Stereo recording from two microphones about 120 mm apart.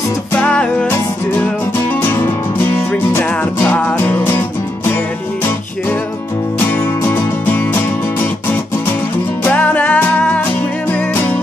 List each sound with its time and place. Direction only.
0.3 s music: 10° left (ahead or behind)
2.6 s music: 15° left (ahead or behind)
6.7 s music: 15° left (ahead or behind)
9.4 s music: 10° left (ahead or behind)